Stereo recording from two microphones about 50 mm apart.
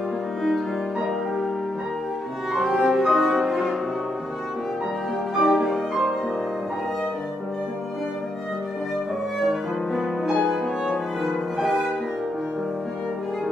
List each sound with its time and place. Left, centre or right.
2.5 s music: centre
5.3 s music: centre
10.5 s music: centre